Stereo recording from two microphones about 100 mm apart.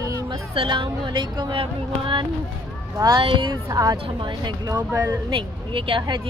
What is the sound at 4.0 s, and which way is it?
Speech, 55° right (ahead or behind).